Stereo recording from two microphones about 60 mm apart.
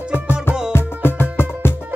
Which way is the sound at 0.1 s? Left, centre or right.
Left.